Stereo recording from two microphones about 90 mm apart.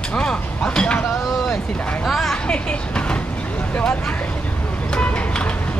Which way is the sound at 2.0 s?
5° left (ahead or behind).